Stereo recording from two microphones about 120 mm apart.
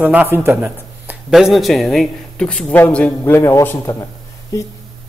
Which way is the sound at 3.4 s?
25° left (ahead or behind).